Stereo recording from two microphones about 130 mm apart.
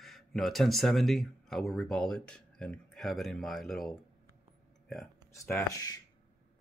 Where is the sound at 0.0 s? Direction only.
Centre (ahead or behind).